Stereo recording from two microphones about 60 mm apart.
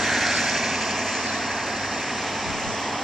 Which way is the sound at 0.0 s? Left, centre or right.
Centre.